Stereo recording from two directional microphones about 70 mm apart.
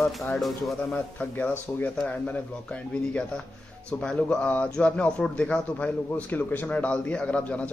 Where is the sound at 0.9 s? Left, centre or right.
Left.